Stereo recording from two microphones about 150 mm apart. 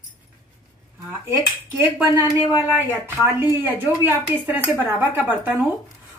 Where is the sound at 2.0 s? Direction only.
30° left (ahead or behind).